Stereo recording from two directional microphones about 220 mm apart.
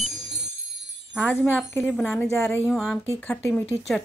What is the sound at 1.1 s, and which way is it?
Wind chime, 5° right (ahead or behind).